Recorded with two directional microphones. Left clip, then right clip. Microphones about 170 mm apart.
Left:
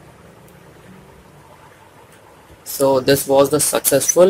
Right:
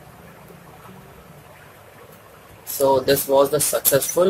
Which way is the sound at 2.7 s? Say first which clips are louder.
Left 3 dB; 30° left (ahead or behind).